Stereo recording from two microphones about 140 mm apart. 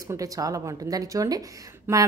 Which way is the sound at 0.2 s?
25° right (ahead or behind).